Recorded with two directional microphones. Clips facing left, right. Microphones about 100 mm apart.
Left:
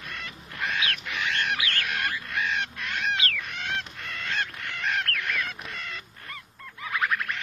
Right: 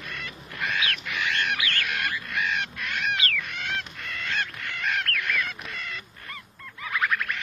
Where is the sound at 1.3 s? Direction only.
35° left (ahead or behind).